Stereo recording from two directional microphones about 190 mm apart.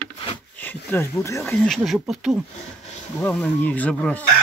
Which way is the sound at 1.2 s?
15° left (ahead or behind).